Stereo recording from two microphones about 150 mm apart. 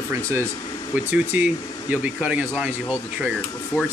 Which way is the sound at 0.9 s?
10° right (ahead or behind).